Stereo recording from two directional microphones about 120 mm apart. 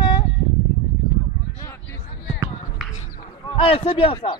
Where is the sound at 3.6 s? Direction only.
50° left (ahead or behind).